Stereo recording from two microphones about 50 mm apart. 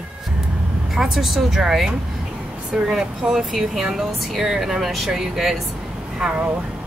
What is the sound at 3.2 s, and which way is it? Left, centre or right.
Speech, centre.